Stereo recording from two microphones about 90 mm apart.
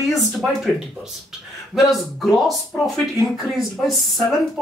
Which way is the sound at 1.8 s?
Centre (ahead or behind).